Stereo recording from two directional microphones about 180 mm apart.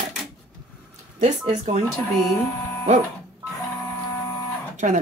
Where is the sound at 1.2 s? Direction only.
40° right (ahead or behind).